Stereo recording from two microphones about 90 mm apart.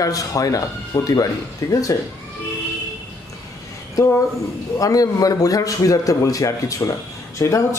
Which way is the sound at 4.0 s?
40° left (ahead or behind).